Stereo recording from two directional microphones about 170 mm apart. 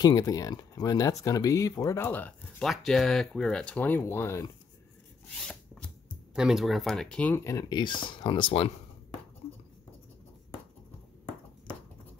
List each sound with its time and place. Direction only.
0.0 s speech: 20° left (ahead or behind)
5.3 s chopping: 5° left (ahead or behind)
6.3 s speech: 5° right (ahead or behind); by 8.6 s 30° left (ahead or behind)